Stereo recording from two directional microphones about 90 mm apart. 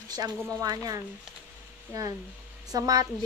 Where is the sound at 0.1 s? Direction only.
50° right (ahead or behind).